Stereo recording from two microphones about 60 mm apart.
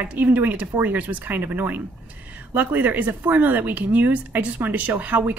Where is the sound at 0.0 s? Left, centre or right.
Right.